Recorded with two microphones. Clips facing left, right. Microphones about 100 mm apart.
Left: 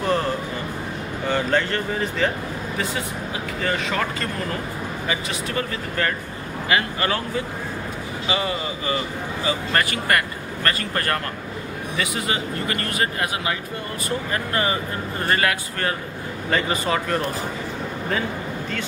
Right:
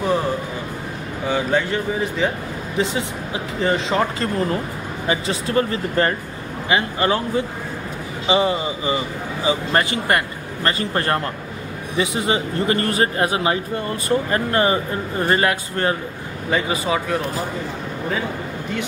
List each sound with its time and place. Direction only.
0.0 s music: 10° right (ahead or behind)
1.2 s speech: 10° right (ahead or behind)
2.8 s speech: 25° right (ahead or behind)
16.4 s speech: 10° right (ahead or behind)